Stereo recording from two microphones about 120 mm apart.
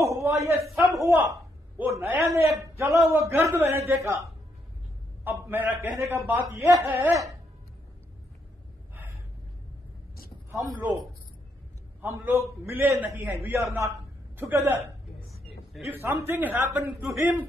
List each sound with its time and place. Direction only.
0.1 s a man's voice: 25° right (ahead or behind)
10.5 s a man's voice: 25° right (ahead or behind)
12.0 s a man's voice: 15° right (ahead or behind)
15.9 s a man's voice: 20° right (ahead or behind)